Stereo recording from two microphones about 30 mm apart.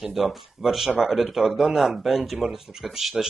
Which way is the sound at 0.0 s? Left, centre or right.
Centre.